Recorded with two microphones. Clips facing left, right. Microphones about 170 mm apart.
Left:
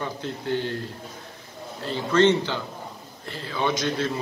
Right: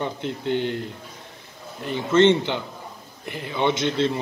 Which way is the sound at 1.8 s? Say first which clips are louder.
Right 2 dB; 20° right (ahead or behind).